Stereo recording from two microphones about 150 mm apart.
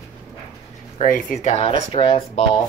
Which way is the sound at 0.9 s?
55° left (ahead or behind).